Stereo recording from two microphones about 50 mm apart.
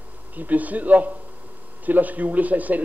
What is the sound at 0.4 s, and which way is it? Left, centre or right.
Speech, right.